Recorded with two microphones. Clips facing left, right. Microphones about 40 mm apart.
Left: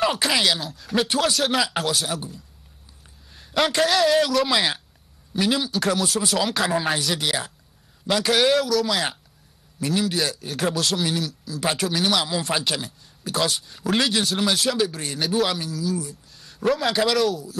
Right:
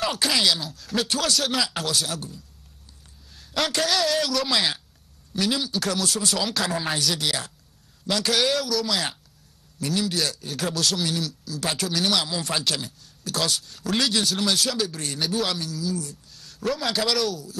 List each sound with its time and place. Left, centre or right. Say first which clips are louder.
0.0 s a man's voice: left 2 dB; centre
8.9 s a man's voice: left 2 dB; centre